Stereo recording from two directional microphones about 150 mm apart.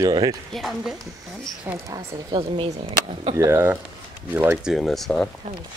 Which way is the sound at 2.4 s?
40° right (ahead or behind).